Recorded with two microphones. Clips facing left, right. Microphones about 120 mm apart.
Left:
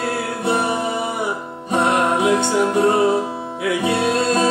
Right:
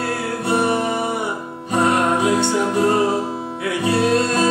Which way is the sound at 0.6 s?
15° left (ahead or behind).